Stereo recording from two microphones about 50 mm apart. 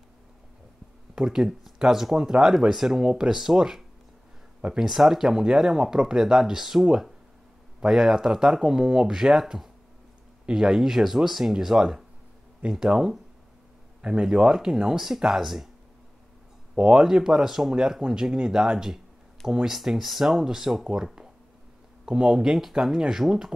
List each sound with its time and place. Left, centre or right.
1.1 s speech: centre
4.8 s speech: centre
14.2 s speech: centre
16.7 s speech: centre